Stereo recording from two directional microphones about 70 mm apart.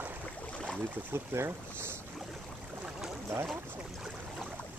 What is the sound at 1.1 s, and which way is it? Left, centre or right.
Speech, right.